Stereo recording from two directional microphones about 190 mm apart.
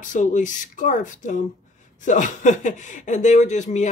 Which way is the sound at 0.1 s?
40° left (ahead or behind).